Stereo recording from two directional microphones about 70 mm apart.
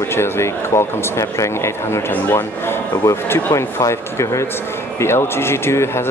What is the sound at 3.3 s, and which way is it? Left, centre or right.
Speech, left.